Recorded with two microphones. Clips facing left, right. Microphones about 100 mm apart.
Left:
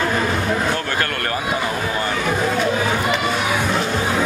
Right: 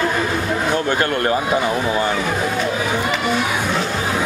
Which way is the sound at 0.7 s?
20° right (ahead or behind).